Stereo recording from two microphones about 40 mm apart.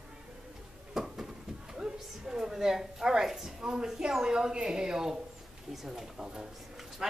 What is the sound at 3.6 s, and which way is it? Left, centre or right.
A woman's voice, right.